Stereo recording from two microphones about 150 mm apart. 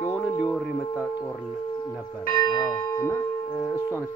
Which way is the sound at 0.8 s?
25° left (ahead or behind).